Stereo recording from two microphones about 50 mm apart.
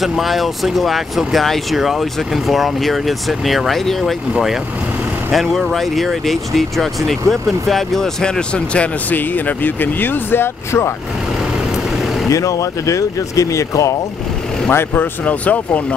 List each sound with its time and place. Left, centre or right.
0.0 s speech: centre
9.1 s speech: left
12.3 s speech: left
14.7 s speech: left
15.2 s speech: left